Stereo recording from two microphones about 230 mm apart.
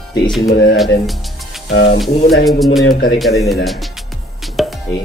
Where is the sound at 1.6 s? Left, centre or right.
Left.